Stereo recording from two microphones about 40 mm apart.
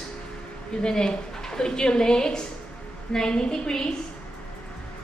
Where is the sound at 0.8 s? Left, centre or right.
Left.